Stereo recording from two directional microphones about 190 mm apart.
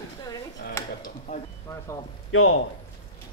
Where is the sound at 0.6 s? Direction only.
55° left (ahead or behind).